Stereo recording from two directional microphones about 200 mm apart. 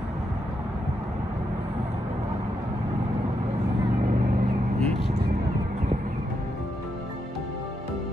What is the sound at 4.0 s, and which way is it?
Vehicle, 40° right (ahead or behind).